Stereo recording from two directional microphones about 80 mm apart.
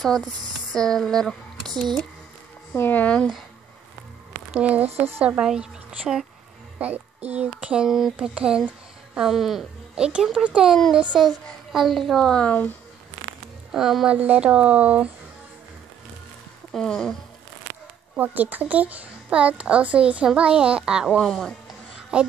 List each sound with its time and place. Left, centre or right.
0.0 s a woman's voice: centre
2.7 s speech: left
4.5 s a woman's voice: centre
13.7 s speech: centre
14.1 s speech: centre
16.7 s speech: centre
18.1 s speech: right
21.2 s speech: centre